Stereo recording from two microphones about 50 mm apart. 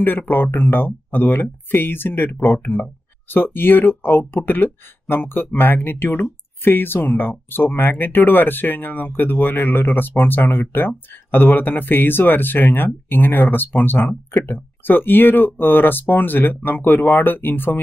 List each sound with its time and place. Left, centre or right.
0.0 s speech: left